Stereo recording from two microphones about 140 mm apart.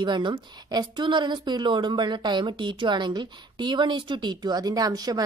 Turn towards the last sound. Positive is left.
turn(degrees=-25)  # may be behind; listen again after turning